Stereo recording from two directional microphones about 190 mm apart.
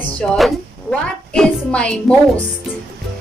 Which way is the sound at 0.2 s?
5° left (ahead or behind).